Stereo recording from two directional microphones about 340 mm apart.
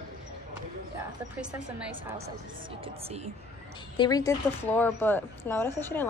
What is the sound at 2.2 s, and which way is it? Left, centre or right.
Speech, centre.